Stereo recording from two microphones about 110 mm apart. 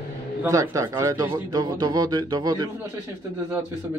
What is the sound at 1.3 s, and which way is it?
A man's voice, 40° right (ahead or behind).